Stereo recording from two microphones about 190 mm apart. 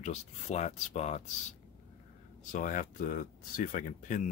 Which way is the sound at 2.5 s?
45° left (ahead or behind).